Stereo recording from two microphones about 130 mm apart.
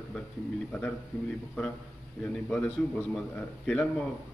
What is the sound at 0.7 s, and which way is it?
Speech, 15° left (ahead or behind).